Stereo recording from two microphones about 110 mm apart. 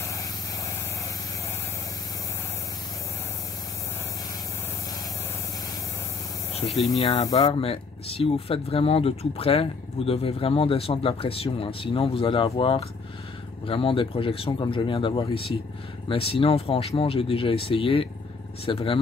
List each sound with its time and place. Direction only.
6.6 s speech: 40° left (ahead or behind)
7.0 s speech: 60° left (ahead or behind)